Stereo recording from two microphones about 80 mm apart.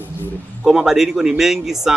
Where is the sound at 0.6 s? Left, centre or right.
Centre.